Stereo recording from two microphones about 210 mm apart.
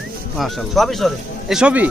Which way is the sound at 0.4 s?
Centre (ahead or behind).